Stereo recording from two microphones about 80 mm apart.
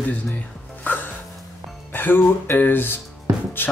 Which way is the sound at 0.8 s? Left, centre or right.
Left.